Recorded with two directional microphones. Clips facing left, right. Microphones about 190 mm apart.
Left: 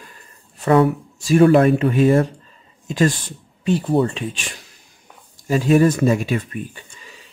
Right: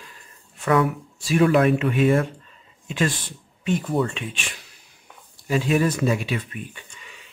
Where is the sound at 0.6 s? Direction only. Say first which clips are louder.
Left 5 dB; 30° left (ahead or behind).